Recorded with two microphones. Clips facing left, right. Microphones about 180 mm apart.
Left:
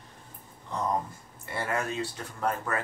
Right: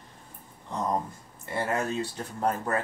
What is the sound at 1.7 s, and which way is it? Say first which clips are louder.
Speech: right 2 dB; 35° right (ahead or behind).